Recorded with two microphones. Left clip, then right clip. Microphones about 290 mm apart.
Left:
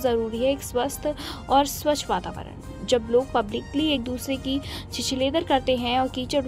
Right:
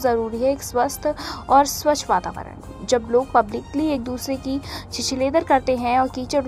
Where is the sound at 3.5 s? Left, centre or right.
Right.